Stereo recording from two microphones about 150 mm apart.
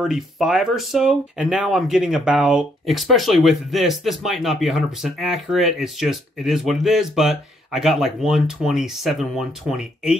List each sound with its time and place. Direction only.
0.0 s speech: 5° right (ahead or behind)